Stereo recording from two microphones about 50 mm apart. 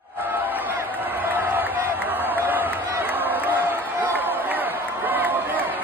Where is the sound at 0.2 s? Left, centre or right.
Right.